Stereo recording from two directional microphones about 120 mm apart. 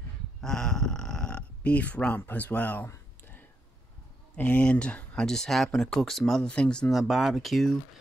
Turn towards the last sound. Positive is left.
turn(degrees=0)  # may be behind; listen again after turning